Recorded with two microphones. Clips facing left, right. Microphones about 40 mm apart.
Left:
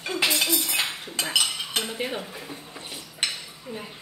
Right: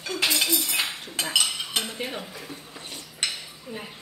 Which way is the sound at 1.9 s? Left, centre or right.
Centre.